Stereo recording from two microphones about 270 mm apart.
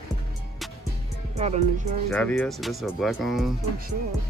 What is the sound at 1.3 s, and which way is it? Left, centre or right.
Speech, right.